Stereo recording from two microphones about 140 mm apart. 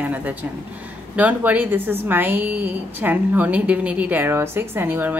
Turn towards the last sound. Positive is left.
turn(degrees=-15)  # may be behind; listen again after turning